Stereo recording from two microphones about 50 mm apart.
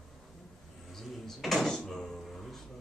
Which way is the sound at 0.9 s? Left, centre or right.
Centre.